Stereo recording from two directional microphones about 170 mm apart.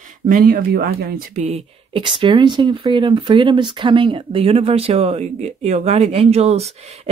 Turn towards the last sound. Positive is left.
turn(degrees=-40)  # may be behind; listen again after turning